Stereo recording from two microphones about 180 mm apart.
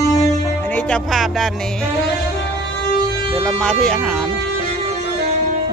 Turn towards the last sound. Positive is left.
turn(degrees=5)  # may be behind; listen again after turning